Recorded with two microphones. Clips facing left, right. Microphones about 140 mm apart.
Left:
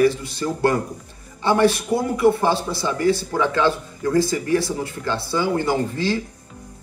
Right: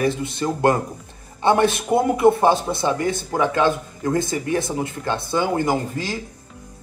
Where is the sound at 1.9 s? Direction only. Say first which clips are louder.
Right 2 dB; 55° right (ahead or behind).